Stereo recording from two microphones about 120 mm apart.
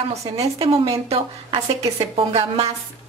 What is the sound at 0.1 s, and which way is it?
A woman's voice, 60° right (ahead or behind).